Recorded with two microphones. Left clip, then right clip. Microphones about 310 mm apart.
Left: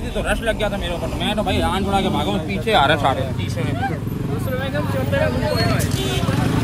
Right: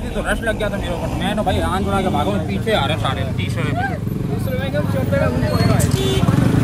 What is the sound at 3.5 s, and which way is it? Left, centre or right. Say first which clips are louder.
Speech: right 3 dB; centre.